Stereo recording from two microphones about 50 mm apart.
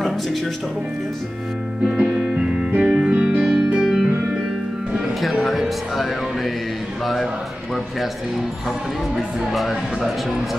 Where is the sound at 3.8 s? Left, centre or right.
Centre.